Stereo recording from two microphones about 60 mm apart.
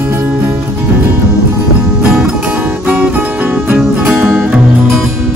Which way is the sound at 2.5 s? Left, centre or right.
Right.